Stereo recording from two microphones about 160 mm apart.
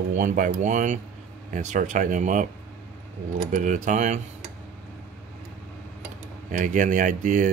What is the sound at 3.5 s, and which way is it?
Speech, 55° right (ahead or behind).